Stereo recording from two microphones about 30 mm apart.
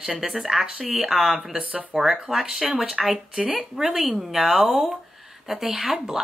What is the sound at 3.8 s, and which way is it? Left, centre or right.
A woman's voice, centre.